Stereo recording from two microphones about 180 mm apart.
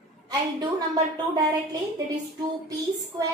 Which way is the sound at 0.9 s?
20° right (ahead or behind).